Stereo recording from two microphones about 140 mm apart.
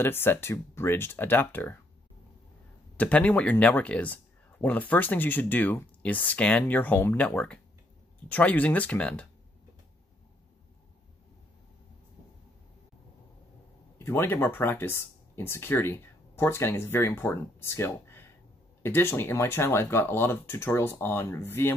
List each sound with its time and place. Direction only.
0.0 s speech: 15° left (ahead or behind)
3.0 s speech: 10° left (ahead or behind)
13.9 s speech: 15° left (ahead or behind)